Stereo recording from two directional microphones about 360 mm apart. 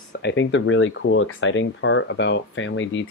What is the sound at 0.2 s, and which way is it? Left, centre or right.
Speech, left.